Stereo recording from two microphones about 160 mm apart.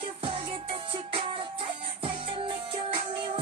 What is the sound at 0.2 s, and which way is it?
Music, 35° right (ahead or behind).